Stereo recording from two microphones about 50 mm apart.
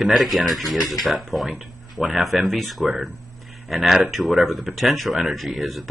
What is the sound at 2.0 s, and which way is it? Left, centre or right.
Speech, left.